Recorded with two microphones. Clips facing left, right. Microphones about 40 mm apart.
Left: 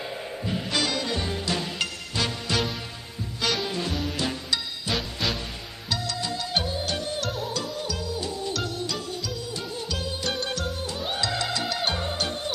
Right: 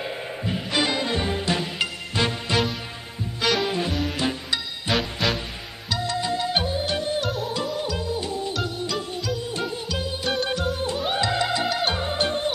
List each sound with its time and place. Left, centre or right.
0.0 s music: centre
3.3 s music: centre
4.2 s music: centre
4.9 s music: centre
6.0 s music: right
7.2 s music: centre
7.5 s music: right
8.5 s music: centre
9.5 s music: right
9.8 s music: centre
12.2 s music: right